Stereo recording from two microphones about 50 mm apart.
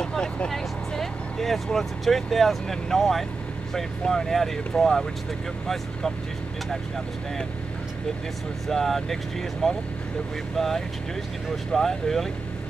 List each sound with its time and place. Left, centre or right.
0.0 s vehicle: centre
0.5 s speech: centre
8.6 s speech: centre